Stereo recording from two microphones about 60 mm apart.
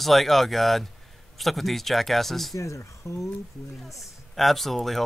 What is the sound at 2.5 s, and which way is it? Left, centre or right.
Speech, left.